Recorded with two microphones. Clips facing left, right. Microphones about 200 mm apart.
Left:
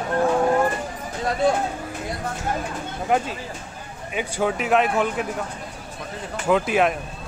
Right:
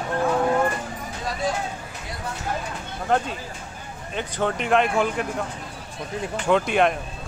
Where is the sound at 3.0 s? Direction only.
5° left (ahead or behind).